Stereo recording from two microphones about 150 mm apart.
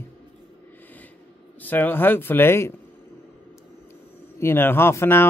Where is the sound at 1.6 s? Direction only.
10° left (ahead or behind).